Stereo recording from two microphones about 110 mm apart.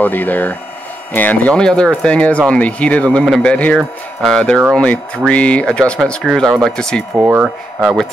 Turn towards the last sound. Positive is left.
turn(degrees=-10)  # may be behind; listen again after turning